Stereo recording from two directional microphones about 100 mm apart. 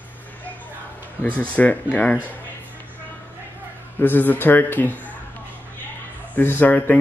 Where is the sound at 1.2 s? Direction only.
15° left (ahead or behind).